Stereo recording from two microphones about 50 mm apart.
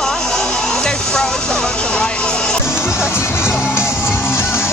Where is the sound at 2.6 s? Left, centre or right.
Left.